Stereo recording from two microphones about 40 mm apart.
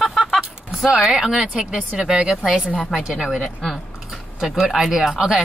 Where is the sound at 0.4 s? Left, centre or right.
Right.